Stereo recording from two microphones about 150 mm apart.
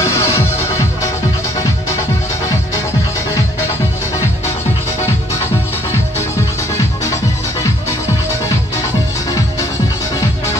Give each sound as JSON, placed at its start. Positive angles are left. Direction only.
{"t": 0.0, "sound": "music", "side_deg": 20}